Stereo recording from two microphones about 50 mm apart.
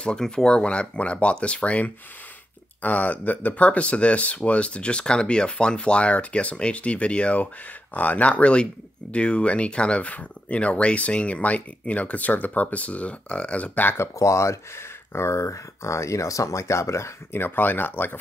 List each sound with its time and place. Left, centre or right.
0.0 s speech: centre
13.9 s speech: left
17.3 s speech: left